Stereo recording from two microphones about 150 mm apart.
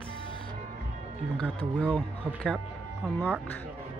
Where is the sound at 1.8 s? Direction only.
10° left (ahead or behind).